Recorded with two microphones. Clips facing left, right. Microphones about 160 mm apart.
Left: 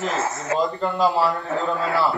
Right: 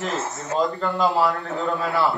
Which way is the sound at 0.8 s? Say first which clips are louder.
Left 1 dB; centre (ahead or behind).